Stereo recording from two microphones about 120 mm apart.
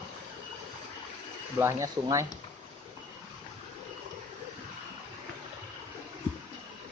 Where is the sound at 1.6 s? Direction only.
25° right (ahead or behind).